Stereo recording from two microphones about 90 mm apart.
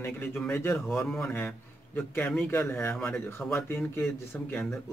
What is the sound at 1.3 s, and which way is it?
A man's voice, 25° left (ahead or behind).